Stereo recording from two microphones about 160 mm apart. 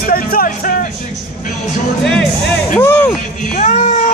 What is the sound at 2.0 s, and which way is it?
Music, 5° left (ahead or behind).